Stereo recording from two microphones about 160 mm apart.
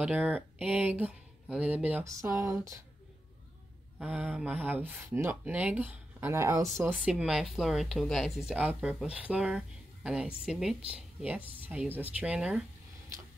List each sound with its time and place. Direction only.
0.0 s speech: 10° right (ahead or behind)
2.0 s speech: 20° right (ahead or behind)
4.0 s speech: 10° right (ahead or behind)
7.1 s speech: 5° right (ahead or behind)